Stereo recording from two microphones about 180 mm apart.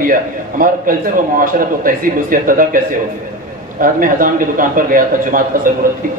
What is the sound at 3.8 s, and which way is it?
A man's voice, 50° right (ahead or behind).